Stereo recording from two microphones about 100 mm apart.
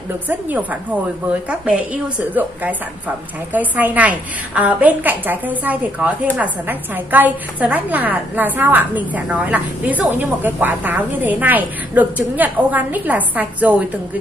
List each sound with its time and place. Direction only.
0.3 s a woman's voice: 15° right (ahead or behind)
2.4 s a woman's voice: 15° right (ahead or behind)
3.5 s a woman's voice: 15° right (ahead or behind)